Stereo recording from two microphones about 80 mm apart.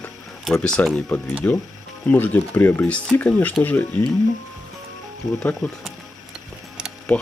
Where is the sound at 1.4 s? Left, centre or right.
Left.